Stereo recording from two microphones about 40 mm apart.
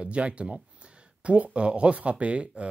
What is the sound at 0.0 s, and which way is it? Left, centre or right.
Speech, right.